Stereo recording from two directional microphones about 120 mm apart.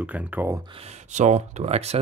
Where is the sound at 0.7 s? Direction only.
70° right (ahead or behind).